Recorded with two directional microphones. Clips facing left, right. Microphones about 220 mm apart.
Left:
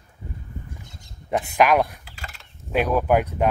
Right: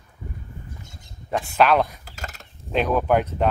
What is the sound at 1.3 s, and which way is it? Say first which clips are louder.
Speech: even; 15° left (ahead or behind).